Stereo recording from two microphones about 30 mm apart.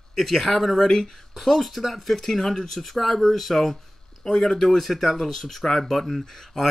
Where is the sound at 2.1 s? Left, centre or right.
Centre.